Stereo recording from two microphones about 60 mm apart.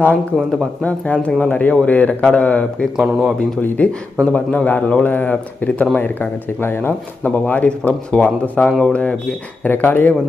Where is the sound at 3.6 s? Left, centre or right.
Left.